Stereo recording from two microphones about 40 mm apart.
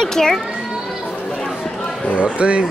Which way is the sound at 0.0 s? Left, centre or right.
Centre.